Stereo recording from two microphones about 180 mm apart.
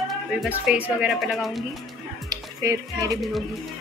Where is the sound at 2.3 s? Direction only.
20° right (ahead or behind).